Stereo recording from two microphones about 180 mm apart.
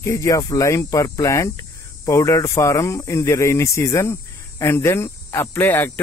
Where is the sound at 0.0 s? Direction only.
15° left (ahead or behind).